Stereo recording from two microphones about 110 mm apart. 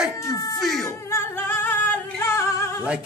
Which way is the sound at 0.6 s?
Centre (ahead or behind).